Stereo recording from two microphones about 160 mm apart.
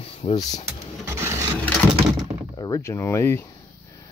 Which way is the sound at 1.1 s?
15° right (ahead or behind).